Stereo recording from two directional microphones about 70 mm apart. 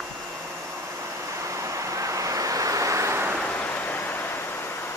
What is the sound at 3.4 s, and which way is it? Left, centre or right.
Vehicle, centre.